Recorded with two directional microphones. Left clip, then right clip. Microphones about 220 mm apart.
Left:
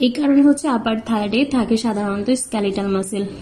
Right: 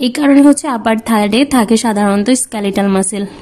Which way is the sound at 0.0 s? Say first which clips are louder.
Right 6 dB; 35° right (ahead or behind).